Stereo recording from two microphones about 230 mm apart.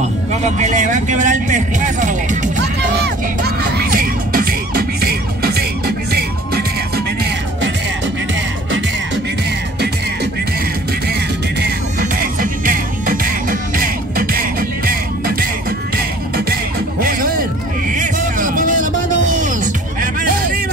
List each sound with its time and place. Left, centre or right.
0.3 s a man's voice: right
3.0 s music: right
12.2 s music: right
17.9 s music: right